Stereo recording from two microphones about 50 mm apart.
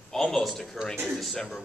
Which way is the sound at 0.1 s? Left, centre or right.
Centre.